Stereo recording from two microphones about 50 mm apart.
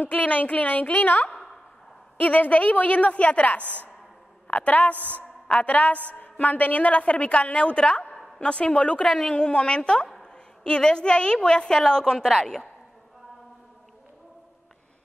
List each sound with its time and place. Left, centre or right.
0.0 s a woman's voice: left; by 12.6 s centre